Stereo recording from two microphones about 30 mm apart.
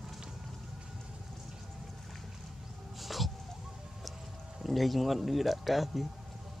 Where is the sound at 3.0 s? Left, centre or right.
Centre.